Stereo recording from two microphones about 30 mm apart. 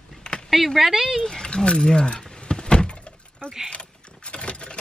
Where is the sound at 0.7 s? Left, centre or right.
Centre.